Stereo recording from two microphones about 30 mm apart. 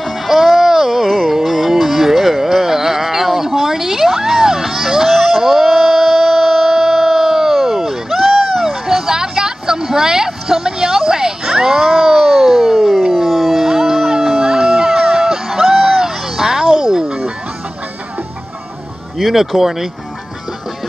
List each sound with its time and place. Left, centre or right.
0.0 s music: centre
8.5 s vehicle: centre
12.7 s a sound: centre
14.4 s music: centre
19.3 s speech: centre